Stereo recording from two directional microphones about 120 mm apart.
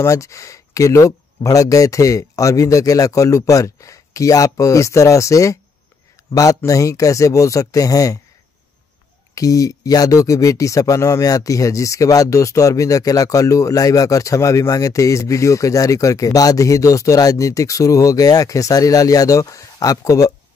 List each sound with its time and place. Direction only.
0.0 s speech: 25° left (ahead or behind)
9.3 s speech: 30° left (ahead or behind)